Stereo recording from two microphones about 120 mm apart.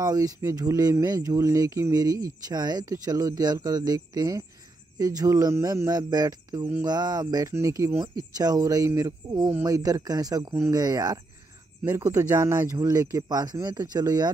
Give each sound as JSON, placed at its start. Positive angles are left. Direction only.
{"t": 0.0, "sound": "speech", "side_deg": -30}